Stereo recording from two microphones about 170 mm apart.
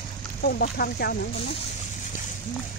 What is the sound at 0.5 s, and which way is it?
Speech, 65° left (ahead or behind).